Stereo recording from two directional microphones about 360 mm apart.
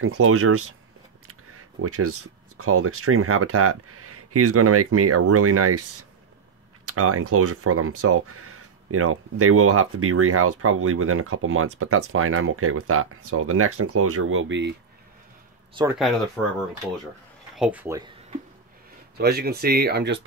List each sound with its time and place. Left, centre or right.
0.0 s speech: right
15.7 s speech: centre
17.6 s speech: centre
19.1 s speech: right